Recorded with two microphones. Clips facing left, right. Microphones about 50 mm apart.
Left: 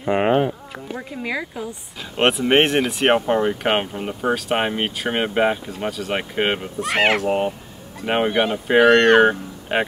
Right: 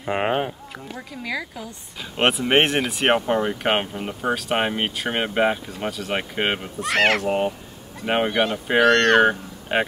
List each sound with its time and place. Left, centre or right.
0.1 s a sound: centre
0.9 s speech: left
2.1 s speech: centre